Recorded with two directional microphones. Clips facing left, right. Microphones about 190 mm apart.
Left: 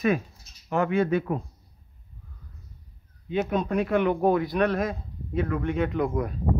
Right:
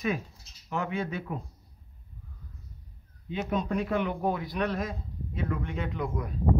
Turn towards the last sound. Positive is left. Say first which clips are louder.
# left 7 dB
turn(degrees=60)  # may be behind; listen again after turning